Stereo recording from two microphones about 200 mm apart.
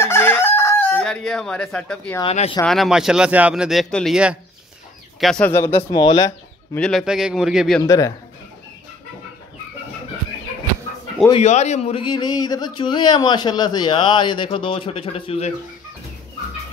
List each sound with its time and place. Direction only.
0.0 s chicken: 10° left (ahead or behind)
2.6 s a man's voice: centre (ahead or behind); by 6.8 s 20° left (ahead or behind)
6.8 s a man's voice: centre (ahead or behind)
7.8 s speech: 15° left (ahead or behind)
11.2 s speech: 30° left (ahead or behind)